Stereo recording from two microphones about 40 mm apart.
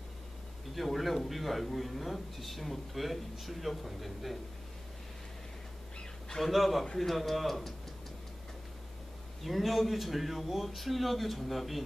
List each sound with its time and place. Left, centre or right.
0.7 s a man's voice: centre
5.9 s a sound: centre
6.4 s a man's voice: centre
9.4 s a man's voice: centre